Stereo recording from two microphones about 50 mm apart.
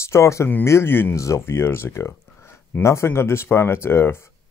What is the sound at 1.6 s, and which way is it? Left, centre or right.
Speech, left.